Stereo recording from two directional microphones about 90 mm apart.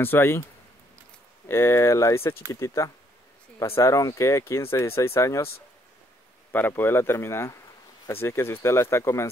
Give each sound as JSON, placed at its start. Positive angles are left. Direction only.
{"t": 0.0, "sound": "speech", "side_deg": 25}
{"t": 1.5, "sound": "speech", "side_deg": 30}
{"t": 6.7, "sound": "speech", "side_deg": 25}